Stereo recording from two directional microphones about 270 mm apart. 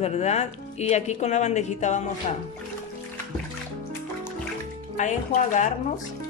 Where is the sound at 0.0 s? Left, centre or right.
Left.